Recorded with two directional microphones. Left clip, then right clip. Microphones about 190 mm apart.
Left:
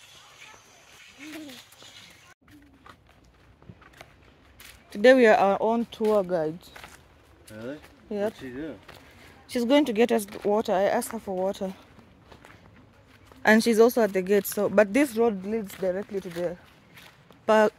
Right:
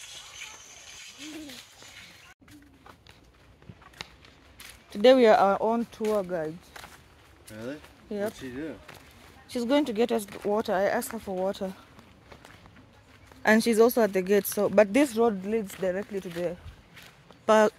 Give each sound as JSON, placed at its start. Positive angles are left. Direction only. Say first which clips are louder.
{"t": 4.6, "sound": "speech", "louder": "left 1 dB", "side_deg": 0}
{"t": 7.4, "sound": "speech", "louder": "left 1 dB", "side_deg": 5}
{"t": 8.4, "sound": "speech", "louder": "even", "side_deg": -5}
{"t": 9.5, "sound": "speech", "louder": "left 4 dB", "side_deg": 20}
{"t": 13.4, "sound": "speech", "louder": "left 2 dB", "side_deg": 10}
{"t": 17.5, "sound": "speech", "louder": "even", "side_deg": 0}